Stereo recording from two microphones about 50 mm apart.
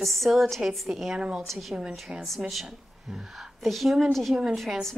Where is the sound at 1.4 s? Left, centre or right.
Centre.